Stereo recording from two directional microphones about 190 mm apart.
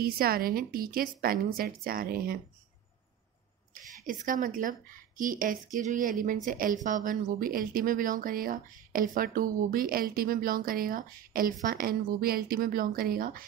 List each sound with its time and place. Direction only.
0.0 s a woman's voice: 50° right (ahead or behind)
3.7 s a woman's voice: 45° right (ahead or behind)